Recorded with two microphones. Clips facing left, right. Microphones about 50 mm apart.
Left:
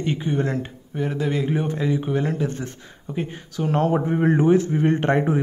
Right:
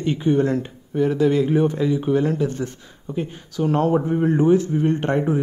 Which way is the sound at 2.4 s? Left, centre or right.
Left.